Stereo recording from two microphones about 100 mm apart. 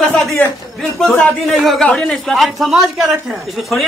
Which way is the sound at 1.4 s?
5° left (ahead or behind).